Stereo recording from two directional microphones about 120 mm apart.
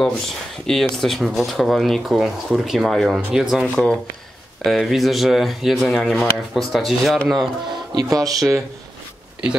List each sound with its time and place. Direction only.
0.7 s speech: centre (ahead or behind)
7.9 s speech: 30° right (ahead or behind)